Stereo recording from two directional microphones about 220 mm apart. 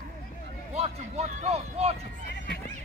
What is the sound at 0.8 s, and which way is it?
Speech, 30° right (ahead or behind).